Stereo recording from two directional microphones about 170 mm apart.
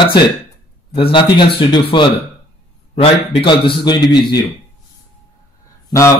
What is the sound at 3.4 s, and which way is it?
A man's voice, 30° left (ahead or behind).